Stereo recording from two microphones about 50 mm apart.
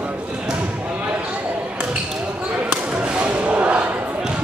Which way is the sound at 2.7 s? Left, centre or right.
Right.